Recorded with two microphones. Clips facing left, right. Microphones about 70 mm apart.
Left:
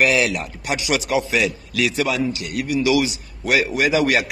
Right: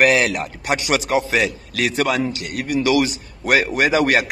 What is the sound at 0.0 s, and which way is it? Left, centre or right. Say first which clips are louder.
A man's voice: right 2 dB; right.